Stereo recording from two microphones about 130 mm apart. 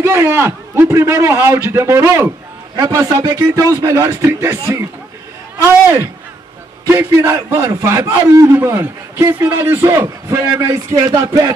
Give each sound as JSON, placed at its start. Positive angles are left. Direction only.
{"t": 0.0, "sound": "a man's voice", "side_deg": -20}
{"t": 6.9, "sound": "a man's voice", "side_deg": -20}